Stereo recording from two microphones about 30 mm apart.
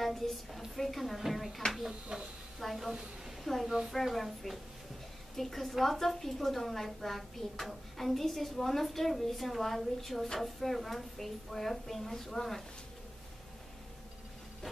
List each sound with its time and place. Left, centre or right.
0.0 s a woman's voice: centre
2.1 s a woman's voice: right
2.6 s a woman's voice: centre
4.1 s a woman's voice: centre